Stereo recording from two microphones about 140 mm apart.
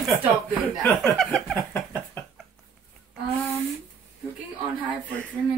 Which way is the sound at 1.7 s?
20° left (ahead or behind).